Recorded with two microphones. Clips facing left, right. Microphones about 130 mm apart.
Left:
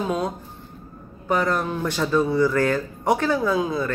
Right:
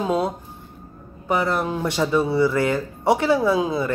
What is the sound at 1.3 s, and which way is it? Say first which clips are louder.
Speech: right 1 dB; 15° right (ahead or behind).